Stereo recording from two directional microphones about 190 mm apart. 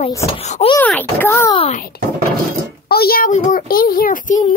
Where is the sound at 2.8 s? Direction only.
55° left (ahead or behind).